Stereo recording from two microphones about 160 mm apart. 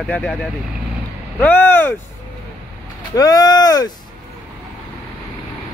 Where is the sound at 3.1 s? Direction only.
25° left (ahead or behind).